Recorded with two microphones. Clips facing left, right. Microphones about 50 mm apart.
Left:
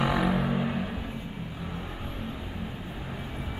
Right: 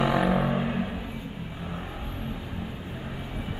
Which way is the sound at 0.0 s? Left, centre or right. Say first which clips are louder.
Right 2 dB; centre.